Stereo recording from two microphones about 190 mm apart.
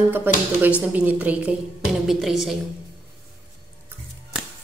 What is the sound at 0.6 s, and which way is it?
A woman's voice, 5° right (ahead or behind).